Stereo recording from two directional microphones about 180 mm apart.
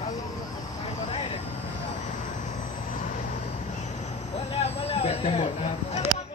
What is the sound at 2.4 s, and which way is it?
Vehicle, 45° left (ahead or behind).